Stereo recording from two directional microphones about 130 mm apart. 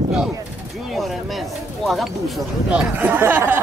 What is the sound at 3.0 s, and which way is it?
Speech, 15° right (ahead or behind).